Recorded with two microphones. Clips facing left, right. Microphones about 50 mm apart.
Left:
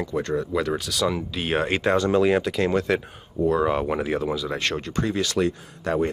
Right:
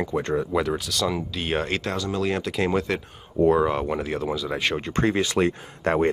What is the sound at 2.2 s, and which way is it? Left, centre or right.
Speech, centre.